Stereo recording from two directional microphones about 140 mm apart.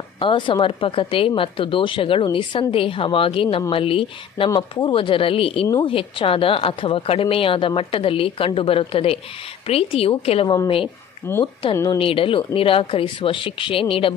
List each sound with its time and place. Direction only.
0.2 s a woman's voice: 35° left (ahead or behind)
11.2 s a woman's voice: 15° left (ahead or behind)
12.0 s a woman's voice: 40° left (ahead or behind)